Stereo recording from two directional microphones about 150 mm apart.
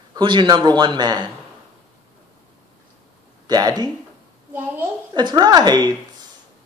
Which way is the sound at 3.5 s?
25° right (ahead or behind).